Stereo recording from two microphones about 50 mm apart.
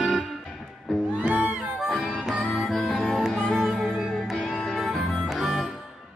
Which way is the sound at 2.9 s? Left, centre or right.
Centre.